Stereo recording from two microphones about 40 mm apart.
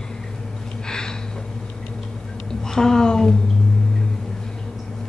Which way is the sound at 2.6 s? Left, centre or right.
Centre.